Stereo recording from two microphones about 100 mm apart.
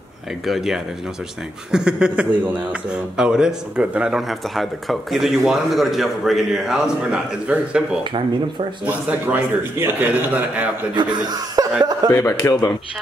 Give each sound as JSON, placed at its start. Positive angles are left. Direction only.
{"t": 0.5, "sound": "speech", "side_deg": -5}
{"t": 8.0, "sound": "speech", "side_deg": -55}
{"t": 8.8, "sound": "speech", "side_deg": -15}
{"t": 11.0, "sound": "speech", "side_deg": -45}
{"t": 12.2, "sound": "speech", "side_deg": 30}